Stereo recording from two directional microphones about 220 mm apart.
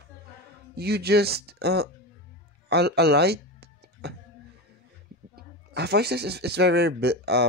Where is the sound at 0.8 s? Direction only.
45° right (ahead or behind).